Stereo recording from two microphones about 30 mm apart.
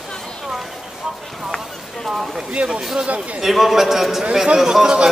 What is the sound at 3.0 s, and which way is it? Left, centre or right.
Speech, right.